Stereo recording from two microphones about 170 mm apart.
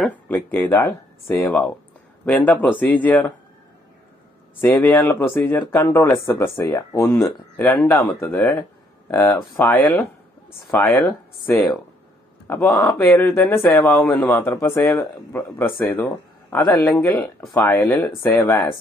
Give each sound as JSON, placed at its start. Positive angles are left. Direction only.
{"t": 0.0, "sound": "speech", "side_deg": 10}
{"t": 4.6, "sound": "speech", "side_deg": 10}
{"t": 12.4, "sound": "speech", "side_deg": 10}
{"t": 16.6, "sound": "speech", "side_deg": 25}
{"t": 16.9, "sound": "speech", "side_deg": 10}